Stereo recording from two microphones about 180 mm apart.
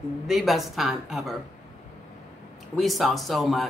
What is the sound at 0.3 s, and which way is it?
Speech, centre (ahead or behind).